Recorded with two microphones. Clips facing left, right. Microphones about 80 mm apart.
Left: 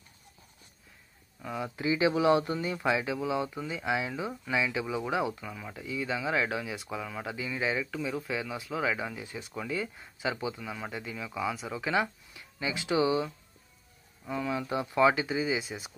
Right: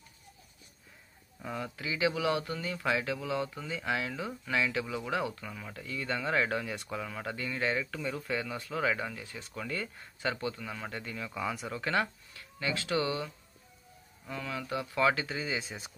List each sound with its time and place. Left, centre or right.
1.8 s speech: left; by 15.9 s centre